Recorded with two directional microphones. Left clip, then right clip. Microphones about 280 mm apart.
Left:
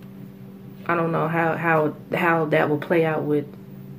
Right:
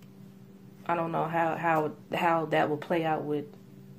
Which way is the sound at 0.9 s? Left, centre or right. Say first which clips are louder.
Left 6 dB; right.